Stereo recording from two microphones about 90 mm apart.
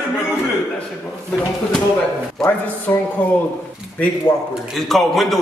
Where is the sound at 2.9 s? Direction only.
20° left (ahead or behind).